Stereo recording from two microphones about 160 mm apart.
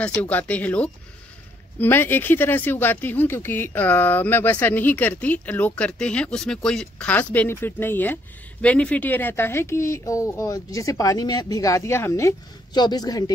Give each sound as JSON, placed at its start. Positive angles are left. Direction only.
{"t": 0.0, "sound": "speech", "side_deg": 10}